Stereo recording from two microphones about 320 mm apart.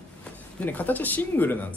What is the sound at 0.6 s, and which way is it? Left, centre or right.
Speech, centre.